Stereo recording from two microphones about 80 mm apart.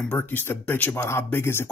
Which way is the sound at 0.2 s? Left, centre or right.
Left.